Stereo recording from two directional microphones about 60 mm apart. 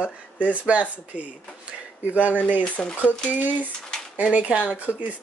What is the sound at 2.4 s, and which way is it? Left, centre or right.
Speech, left.